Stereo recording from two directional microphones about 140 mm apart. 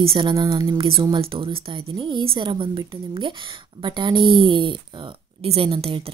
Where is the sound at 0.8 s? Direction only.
40° right (ahead or behind).